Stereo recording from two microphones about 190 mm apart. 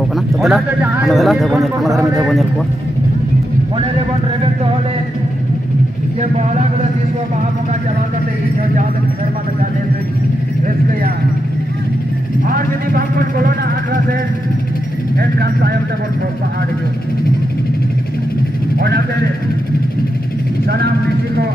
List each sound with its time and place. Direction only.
0.4 s a man's voice: centre (ahead or behind)
15.1 s speech: 55° right (ahead or behind)